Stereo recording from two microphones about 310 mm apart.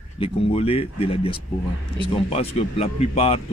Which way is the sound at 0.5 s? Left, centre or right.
Centre.